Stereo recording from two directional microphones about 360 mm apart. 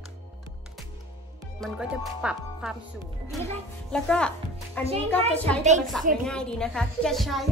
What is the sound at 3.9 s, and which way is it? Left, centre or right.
Speech, centre.